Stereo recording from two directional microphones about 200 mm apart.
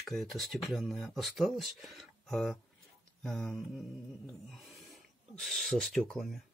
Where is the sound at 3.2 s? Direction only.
Centre (ahead or behind).